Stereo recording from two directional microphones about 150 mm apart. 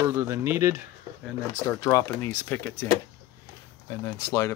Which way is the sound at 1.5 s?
20° left (ahead or behind).